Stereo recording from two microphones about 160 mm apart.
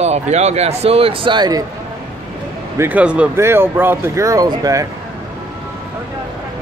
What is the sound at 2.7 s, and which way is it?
Speech, 10° right (ahead or behind).